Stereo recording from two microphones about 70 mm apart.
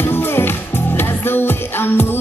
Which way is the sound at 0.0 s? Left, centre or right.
Left.